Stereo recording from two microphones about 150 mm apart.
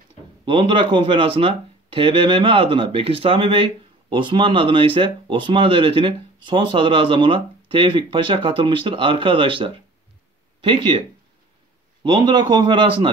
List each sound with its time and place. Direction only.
0.5 s speech: 35° right (ahead or behind)
12.0 s speech: 30° right (ahead or behind)